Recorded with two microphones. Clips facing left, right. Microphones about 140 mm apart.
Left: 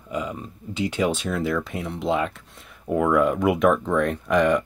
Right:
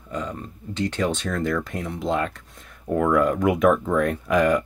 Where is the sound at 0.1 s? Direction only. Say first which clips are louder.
Left 1 dB; 10° left (ahead or behind).